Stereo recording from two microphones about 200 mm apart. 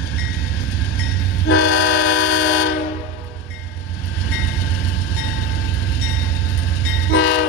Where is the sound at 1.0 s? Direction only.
90° left.